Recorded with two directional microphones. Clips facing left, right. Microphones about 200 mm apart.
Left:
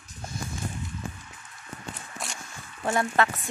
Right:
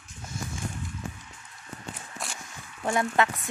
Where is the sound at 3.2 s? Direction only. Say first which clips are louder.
Left 1 dB; 20° right (ahead or behind).